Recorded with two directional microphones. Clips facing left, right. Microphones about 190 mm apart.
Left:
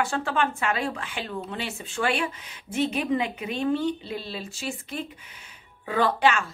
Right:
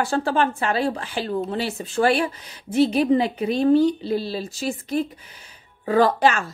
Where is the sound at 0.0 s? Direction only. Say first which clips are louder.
Right 5 dB; 35° right (ahead or behind).